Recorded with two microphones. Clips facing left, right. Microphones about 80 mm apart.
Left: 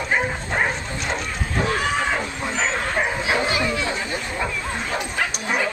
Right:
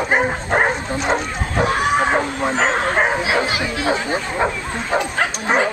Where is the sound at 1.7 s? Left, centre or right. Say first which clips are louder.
Right 5 dB; right.